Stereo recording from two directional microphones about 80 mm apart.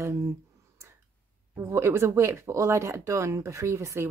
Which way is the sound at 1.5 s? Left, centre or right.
Right.